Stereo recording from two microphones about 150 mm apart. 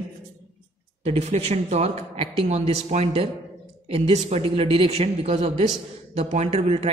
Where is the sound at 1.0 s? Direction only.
45° right (ahead or behind).